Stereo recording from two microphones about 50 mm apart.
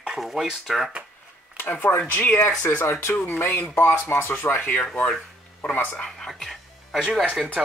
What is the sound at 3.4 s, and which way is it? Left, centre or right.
Speech, left.